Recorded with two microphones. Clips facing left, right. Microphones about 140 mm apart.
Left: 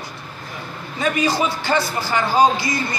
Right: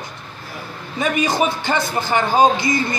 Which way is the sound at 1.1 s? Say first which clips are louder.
Right 2 dB; 20° right (ahead or behind).